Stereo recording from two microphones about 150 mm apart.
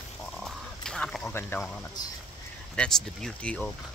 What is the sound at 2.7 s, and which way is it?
Speech, 5° left (ahead or behind).